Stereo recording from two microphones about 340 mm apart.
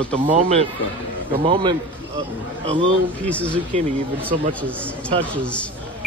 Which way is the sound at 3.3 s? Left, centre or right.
Centre.